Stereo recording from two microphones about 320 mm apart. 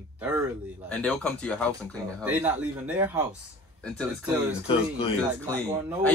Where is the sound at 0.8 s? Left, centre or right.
Centre.